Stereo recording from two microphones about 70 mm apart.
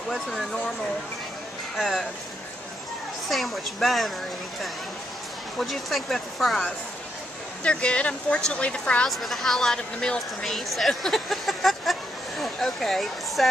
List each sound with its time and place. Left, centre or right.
0.1 s speech: centre
1.8 s speech: centre
3.3 s speech: centre
5.6 s speech: centre
7.6 s a woman's voice: centre
9.1 s speech: centre